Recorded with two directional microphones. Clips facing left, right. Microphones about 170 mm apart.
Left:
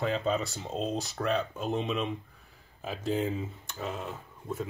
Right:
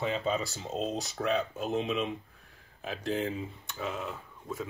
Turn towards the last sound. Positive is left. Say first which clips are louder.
# left 2 dB
turn(degrees=0)  # may be behind; listen again after turning